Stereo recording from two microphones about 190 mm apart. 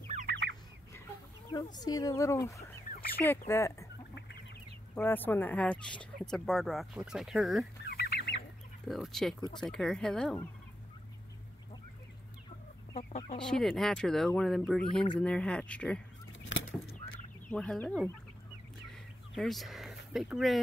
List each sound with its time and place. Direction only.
0.3 s bird: 65° right (ahead or behind)
1.5 s speech: 20° left (ahead or behind)
4.9 s speech: 10° left (ahead or behind)
7.8 s fowl: 55° left (ahead or behind)
8.8 s speech: centre (ahead or behind)
12.9 s speech: 30° left (ahead or behind)
13.4 s speech: 5° left (ahead or behind)
16.3 s vehicle: 90° left
17.5 s speech: 5° left (ahead or behind)
19.3 s a sound: centre (ahead or behind)
20.1 s speech: centre (ahead or behind)